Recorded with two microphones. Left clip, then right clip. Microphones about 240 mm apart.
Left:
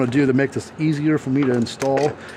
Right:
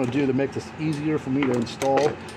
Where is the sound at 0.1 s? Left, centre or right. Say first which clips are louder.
Left 5 dB; left.